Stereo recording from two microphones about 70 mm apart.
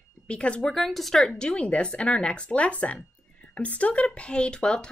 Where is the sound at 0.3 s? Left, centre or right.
Centre.